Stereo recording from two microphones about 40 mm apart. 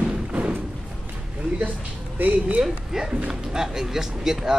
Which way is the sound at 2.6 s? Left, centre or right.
Centre.